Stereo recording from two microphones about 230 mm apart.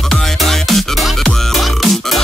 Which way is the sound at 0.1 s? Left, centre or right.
Centre.